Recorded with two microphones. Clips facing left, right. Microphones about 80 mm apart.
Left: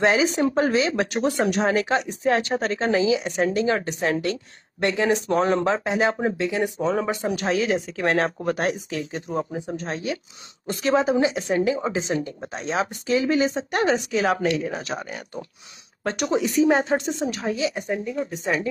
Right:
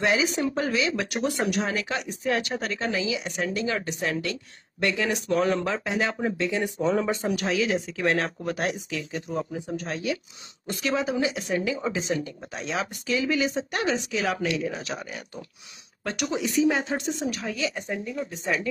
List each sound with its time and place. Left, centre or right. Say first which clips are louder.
0.0 s speech: left 4 dB; left
7.2 s speech: left 3 dB; left
17.3 s speech: left 4 dB; left
17.7 s speech: left 4 dB; centre
18.4 s speech: left 2 dB; left